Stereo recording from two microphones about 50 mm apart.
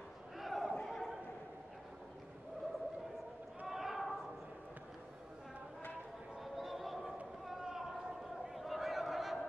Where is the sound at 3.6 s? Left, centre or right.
Centre.